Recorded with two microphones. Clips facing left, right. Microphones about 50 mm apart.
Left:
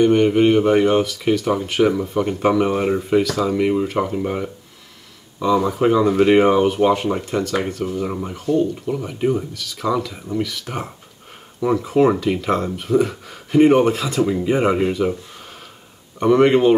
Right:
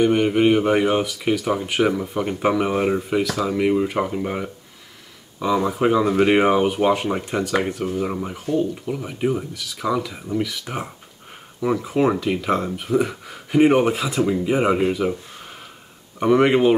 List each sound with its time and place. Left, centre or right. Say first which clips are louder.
0.0 s speech: left 3 dB; centre